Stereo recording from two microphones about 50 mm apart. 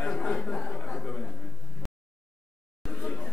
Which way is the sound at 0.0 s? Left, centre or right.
Centre.